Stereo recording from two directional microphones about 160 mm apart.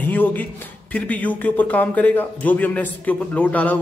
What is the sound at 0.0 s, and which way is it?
Speech, 10° left (ahead or behind).